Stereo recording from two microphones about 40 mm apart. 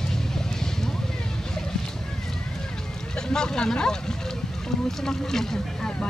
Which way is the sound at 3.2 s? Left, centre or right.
Centre.